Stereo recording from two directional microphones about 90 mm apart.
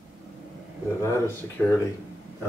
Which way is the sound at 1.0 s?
25° left (ahead or behind).